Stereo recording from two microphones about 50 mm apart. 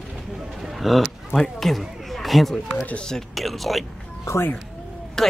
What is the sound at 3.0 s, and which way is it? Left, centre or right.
Speech, centre.